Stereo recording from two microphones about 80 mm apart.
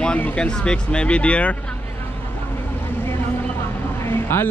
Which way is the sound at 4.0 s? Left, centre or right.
Left.